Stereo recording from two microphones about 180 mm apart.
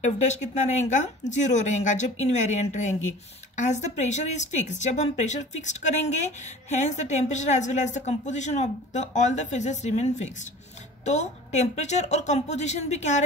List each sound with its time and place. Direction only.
0.0 s speech: 40° left (ahead or behind)